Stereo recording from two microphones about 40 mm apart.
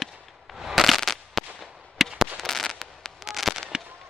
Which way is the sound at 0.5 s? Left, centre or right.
Centre.